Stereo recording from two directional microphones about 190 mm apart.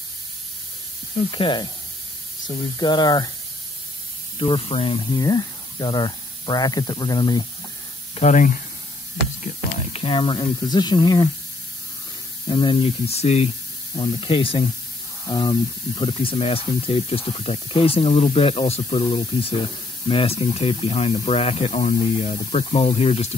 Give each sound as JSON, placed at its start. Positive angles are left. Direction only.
{"t": 1.3, "sound": "speech", "side_deg": 25}
{"t": 4.4, "sound": "speech", "side_deg": 30}
{"t": 8.1, "sound": "speech", "side_deg": 35}
{"t": 9.9, "sound": "speech", "side_deg": 25}
{"t": 12.4, "sound": "speech", "side_deg": 25}